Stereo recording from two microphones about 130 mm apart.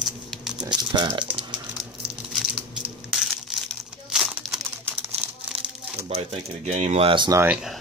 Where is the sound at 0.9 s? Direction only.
40° right (ahead or behind).